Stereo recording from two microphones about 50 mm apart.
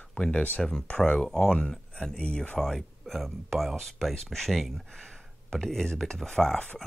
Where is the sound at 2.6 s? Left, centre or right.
Centre.